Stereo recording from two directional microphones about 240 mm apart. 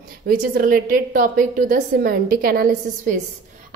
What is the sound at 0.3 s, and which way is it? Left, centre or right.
A woman's voice, right.